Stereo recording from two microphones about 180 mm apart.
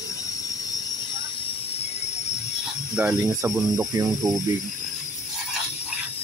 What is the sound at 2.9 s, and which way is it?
Speech, 5° right (ahead or behind).